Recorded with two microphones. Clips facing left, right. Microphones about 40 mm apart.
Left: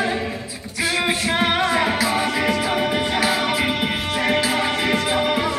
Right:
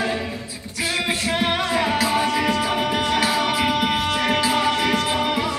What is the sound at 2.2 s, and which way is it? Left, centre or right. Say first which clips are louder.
Music: even; left.